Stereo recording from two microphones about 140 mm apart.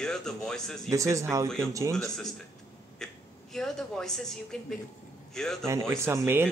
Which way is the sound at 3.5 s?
5° left (ahead or behind).